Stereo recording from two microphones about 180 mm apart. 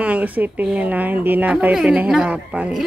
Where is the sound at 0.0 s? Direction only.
10° right (ahead or behind).